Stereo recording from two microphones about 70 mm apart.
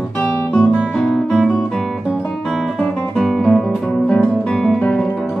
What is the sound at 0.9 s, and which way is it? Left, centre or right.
Guitar, centre.